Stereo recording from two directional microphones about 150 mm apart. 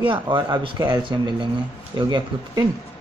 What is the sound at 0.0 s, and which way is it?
Speech, 35° right (ahead or behind).